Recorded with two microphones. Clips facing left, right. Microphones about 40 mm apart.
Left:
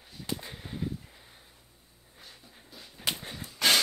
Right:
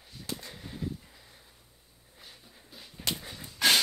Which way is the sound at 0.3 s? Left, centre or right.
Left.